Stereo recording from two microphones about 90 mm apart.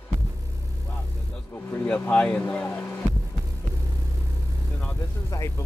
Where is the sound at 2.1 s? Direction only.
10° left (ahead or behind).